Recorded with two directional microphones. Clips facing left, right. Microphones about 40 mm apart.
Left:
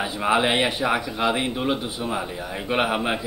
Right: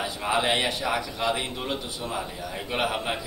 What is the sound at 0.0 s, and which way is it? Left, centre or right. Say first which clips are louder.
A man's voice: left 4 dB; centre.